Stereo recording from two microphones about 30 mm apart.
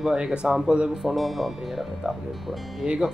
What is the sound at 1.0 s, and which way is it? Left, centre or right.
Speech, centre.